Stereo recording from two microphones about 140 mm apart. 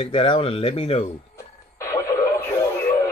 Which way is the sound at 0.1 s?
40° left (ahead or behind).